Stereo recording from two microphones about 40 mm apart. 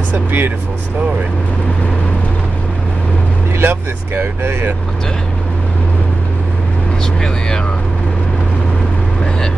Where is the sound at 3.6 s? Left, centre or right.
Right.